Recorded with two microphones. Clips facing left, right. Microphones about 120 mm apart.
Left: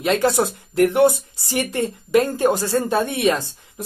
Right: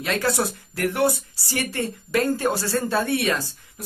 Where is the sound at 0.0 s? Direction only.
20° left (ahead or behind).